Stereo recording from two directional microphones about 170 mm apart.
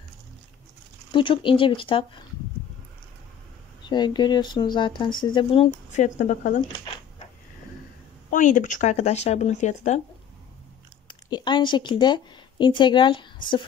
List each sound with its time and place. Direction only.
1.1 s speech: 30° left (ahead or behind)
3.8 s speech: 25° left (ahead or behind)
5.9 s speech: 45° left (ahead or behind)
8.3 s speech: 50° left (ahead or behind)
11.1 s a woman's voice: 25° left (ahead or behind)